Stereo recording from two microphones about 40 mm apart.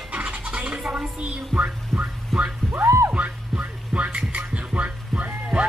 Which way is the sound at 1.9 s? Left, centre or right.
Centre.